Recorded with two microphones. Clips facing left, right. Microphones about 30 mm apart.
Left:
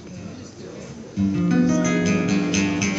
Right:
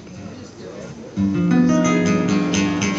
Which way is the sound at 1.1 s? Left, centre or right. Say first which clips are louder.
Right 3 dB; centre.